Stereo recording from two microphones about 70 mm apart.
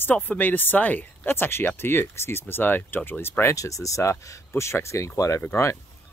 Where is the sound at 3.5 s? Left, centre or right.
Left.